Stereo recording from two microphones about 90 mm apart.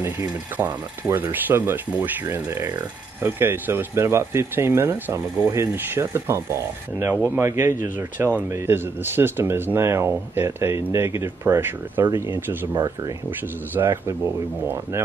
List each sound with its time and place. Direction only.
0.0 s speech: 25° right (ahead or behind); by 13.1 s 45° right (ahead or behind)
13.7 s speech: 30° right (ahead or behind)